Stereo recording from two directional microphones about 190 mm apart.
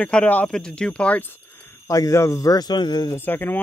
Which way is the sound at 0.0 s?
10° left (ahead or behind).